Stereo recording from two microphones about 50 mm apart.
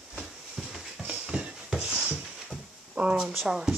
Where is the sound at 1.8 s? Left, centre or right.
Right.